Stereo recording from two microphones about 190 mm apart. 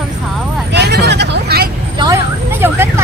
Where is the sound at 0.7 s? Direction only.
60° right (ahead or behind).